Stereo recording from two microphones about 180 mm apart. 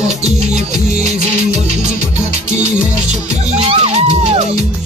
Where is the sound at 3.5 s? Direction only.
35° right (ahead or behind).